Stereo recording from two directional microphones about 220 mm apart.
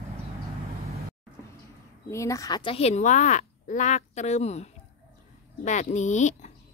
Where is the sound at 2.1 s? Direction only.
15° left (ahead or behind).